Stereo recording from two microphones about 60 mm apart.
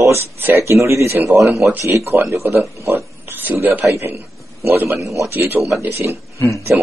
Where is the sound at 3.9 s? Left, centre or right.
Right.